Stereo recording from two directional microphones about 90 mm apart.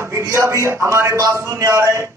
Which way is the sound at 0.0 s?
30° right (ahead or behind).